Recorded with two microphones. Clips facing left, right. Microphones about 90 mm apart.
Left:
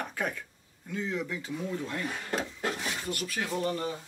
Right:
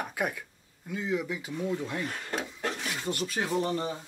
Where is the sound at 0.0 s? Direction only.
10° right (ahead or behind).